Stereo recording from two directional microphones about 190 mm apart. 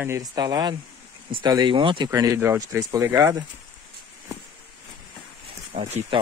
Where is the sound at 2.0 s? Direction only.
15° right (ahead or behind).